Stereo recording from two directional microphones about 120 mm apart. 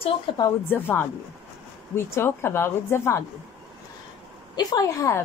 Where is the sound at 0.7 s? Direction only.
15° left (ahead or behind).